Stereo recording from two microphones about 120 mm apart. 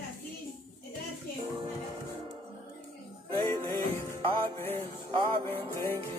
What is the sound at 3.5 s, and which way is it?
Music, 20° left (ahead or behind).